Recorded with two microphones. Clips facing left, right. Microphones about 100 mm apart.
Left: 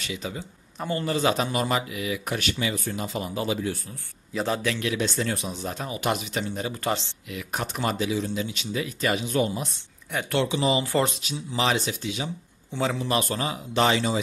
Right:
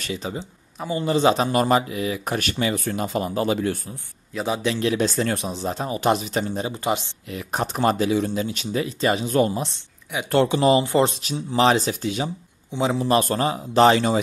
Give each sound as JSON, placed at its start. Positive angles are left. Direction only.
{"t": 0.0, "sound": "a man's voice", "side_deg": -35}
{"t": 1.5, "sound": "speech", "side_deg": -40}
{"t": 4.6, "sound": "a man's voice", "side_deg": -25}
{"t": 4.9, "sound": "speech", "side_deg": -45}
{"t": 5.5, "sound": "speech", "side_deg": -30}
{"t": 7.2, "sound": "speech", "side_deg": -35}
{"t": 8.8, "sound": "speech", "side_deg": -30}
{"t": 10.8, "sound": "a man's voice", "side_deg": -20}
{"t": 11.1, "sound": "speech", "side_deg": -45}
{"t": 13.9, "sound": "speech", "side_deg": -50}